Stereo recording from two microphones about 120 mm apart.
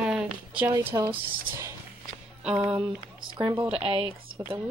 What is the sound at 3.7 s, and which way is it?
Speech, 50° right (ahead or behind).